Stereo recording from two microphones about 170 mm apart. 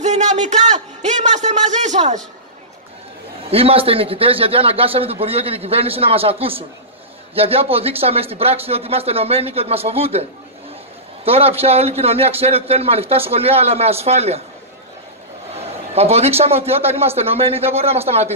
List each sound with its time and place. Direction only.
0.0 s a sound: 45° right (ahead or behind)
3.4 s a man's voice: 35° right (ahead or behind)
7.3 s a man's voice: 35° right (ahead or behind)
11.2 s a man's voice: 35° right (ahead or behind)
15.5 s a man's voice: 35° right (ahead or behind)